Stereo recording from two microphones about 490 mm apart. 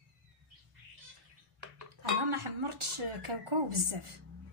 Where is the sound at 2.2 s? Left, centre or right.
Right.